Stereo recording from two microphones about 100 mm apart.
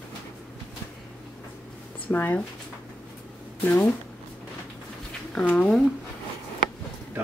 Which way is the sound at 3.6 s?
20° left (ahead or behind).